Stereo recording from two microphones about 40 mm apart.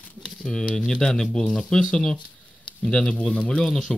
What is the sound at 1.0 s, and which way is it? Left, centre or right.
Speech, centre.